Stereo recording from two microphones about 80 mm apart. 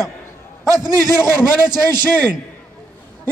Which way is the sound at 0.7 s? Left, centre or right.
Right.